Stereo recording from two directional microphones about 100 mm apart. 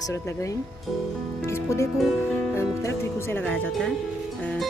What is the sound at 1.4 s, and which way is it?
Speech, 30° left (ahead or behind).